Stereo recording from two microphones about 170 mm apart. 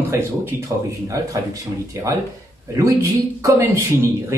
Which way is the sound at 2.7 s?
20° right (ahead or behind).